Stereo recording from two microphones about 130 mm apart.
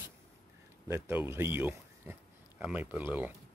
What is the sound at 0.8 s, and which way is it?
Speech, 15° right (ahead or behind).